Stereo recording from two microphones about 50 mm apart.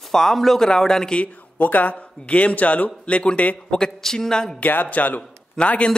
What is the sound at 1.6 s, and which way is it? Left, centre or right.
Speech, left.